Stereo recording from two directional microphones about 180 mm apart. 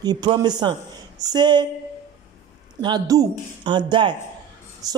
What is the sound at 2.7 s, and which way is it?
A man's voice, 25° right (ahead or behind).